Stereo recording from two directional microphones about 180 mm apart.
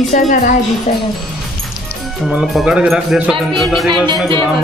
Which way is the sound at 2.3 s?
Centre (ahead or behind).